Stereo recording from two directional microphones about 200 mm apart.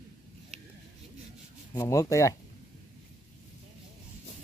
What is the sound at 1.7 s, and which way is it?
Speech, 15° left (ahead or behind).